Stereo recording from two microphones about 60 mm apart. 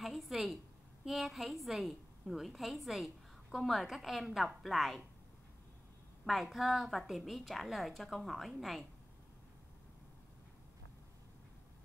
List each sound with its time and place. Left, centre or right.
0.0 s a sound: centre
1.0 s a woman's voice: centre
6.2 s a woman's voice: centre